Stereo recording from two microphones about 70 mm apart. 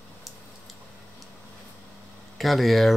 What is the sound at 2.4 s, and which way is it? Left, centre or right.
Speech, centre.